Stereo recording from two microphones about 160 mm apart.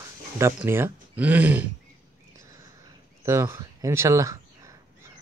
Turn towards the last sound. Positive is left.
turn(degrees=-20)  # may be behind; listen again after turning